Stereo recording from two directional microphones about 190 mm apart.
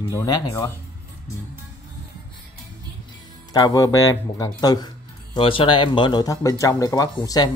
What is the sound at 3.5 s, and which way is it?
Speech, 20° left (ahead or behind).